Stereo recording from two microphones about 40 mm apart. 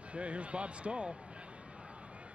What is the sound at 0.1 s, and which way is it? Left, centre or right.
Speech, right.